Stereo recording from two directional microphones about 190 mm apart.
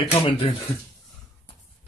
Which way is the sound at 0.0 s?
30° left (ahead or behind).